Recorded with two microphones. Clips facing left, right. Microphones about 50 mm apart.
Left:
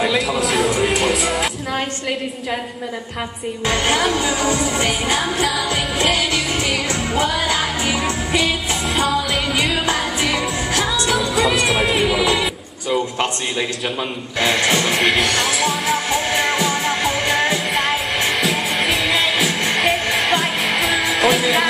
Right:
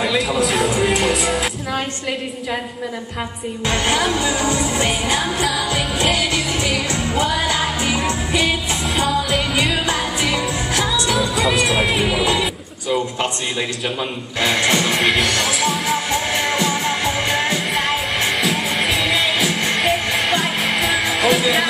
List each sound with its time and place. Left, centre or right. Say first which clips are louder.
0.0 s music: even; centre
3.8 s speech: even; left
5.4 s music of asia: even; centre
6.1 s music: even; left
8.9 s music: even; centre
9.8 s music: left 1 dB; left
11.1 s music: left 1 dB; centre
14.4 s music of asia: even; centre
14.9 s music: even; centre
16.3 s music: left 1 dB; centre